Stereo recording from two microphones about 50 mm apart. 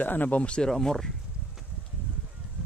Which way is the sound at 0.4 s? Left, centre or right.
Left.